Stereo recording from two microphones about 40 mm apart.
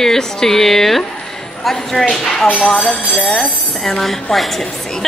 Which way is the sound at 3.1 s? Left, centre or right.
Left.